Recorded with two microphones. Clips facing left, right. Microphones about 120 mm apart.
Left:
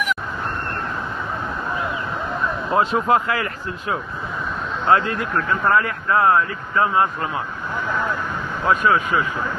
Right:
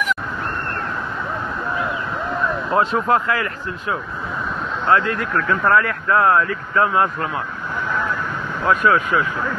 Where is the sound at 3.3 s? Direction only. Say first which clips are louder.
Right 1 dB; 20° left (ahead or behind); by 7.4 s 5° left (ahead or behind).